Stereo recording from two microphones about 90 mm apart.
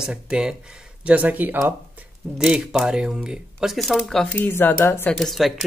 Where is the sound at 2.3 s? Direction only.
10° right (ahead or behind).